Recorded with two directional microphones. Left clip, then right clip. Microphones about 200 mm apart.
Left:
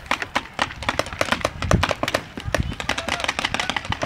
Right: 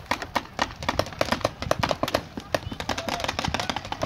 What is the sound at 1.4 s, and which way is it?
Computer keyboard, centre (ahead or behind).